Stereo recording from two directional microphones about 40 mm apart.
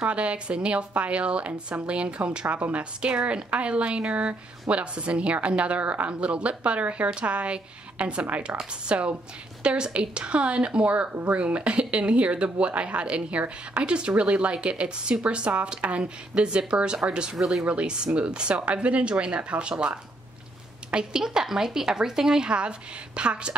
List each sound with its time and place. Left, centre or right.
0.0 s a woman's voice: right
17.4 s speech: centre
17.6 s speech: right
20.9 s speech: right